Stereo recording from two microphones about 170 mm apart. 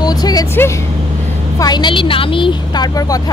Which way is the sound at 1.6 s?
25° left (ahead or behind).